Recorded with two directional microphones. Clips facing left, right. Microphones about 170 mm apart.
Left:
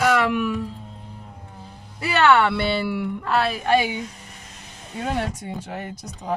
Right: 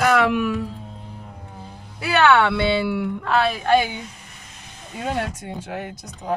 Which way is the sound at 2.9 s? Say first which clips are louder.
Right 2 dB; centre (ahead or behind).